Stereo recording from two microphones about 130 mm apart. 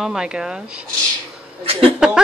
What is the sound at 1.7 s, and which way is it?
Speech, 45° right (ahead or behind).